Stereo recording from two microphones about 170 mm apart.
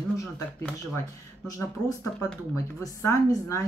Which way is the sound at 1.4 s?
20° left (ahead or behind).